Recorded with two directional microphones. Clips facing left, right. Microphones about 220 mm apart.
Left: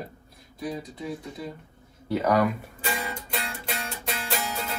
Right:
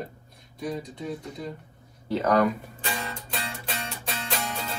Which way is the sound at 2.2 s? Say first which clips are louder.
Right 1 dB; 5° left (ahead or behind).